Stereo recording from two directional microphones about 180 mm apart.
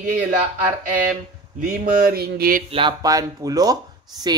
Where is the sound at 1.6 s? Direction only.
50° right (ahead or behind).